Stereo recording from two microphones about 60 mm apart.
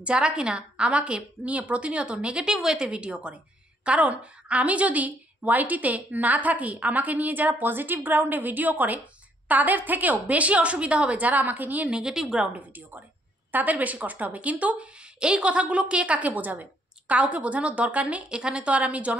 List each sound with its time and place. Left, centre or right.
0.0 s a woman's voice: centre
2.9 s a woman's voice: centre
11.9 s a woman's voice: centre
12.5 s a woman's voice: right